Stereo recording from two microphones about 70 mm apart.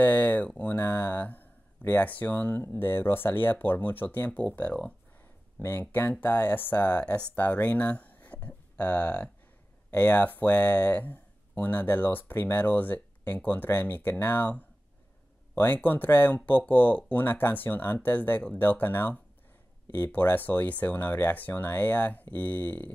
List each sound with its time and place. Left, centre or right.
0.0 s speech: left
5.6 s speech: left